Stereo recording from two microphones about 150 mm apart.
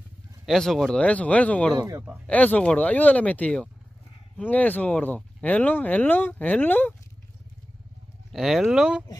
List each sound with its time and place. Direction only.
0.5 s speech: 5° left (ahead or behind)
1.8 s speech: 20° right (ahead or behind)
2.2 s speech: 10° left (ahead or behind)
8.3 s speech: centre (ahead or behind)